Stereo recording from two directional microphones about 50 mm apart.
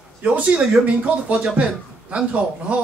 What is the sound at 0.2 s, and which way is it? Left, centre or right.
Speech, right.